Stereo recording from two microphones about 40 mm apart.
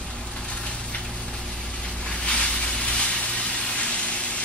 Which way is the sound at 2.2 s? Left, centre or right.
Left.